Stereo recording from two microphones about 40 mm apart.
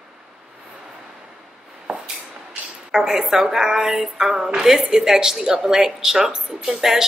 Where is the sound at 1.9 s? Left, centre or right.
Right.